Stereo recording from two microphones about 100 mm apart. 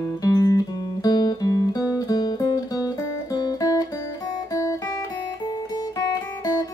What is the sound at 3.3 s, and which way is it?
Music, 40° left (ahead or behind).